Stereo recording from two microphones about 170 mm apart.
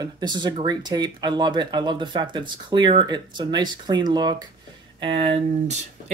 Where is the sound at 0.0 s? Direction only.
25° right (ahead or behind).